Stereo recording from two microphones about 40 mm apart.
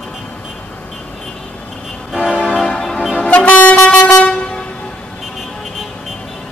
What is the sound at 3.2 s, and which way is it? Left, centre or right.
Vehicle, left.